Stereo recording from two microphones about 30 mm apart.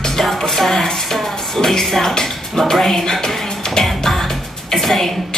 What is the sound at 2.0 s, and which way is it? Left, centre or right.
Dishes, centre.